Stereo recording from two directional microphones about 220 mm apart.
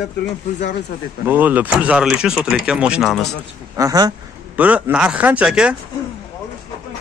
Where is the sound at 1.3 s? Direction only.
10° right (ahead or behind).